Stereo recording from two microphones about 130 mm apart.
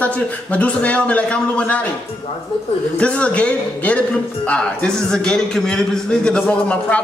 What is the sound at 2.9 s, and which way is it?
Speech, 10° left (ahead or behind).